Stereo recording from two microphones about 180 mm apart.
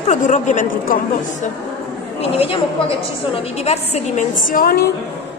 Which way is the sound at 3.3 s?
35° left (ahead or behind).